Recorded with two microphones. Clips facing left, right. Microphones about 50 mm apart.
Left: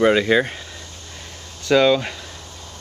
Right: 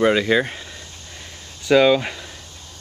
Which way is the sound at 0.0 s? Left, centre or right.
Centre.